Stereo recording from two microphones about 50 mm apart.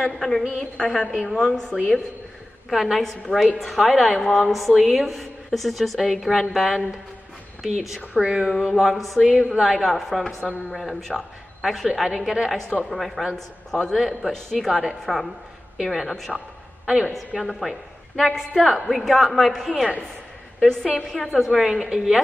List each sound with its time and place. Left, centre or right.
0.0 s a woman's voice: centre
2.7 s a woman's voice: centre
8.1 s speech: right
8.5 s a woman's voice: centre
9.6 s a woman's voice: centre
10.2 s speech: centre
10.7 s a woman's voice: centre
13.9 s a woman's voice: centre
16.8 s a woman's voice: centre
17.4 s a woman's voice: centre
21.3 s a woman's voice: centre
21.6 s a woman's voice: centre